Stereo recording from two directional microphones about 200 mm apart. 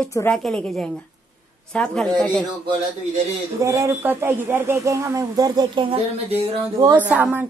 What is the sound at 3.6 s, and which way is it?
A man's voice, 15° right (ahead or behind).